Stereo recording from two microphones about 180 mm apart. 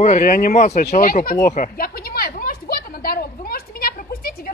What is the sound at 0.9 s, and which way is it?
Speech, 55° left (ahead or behind).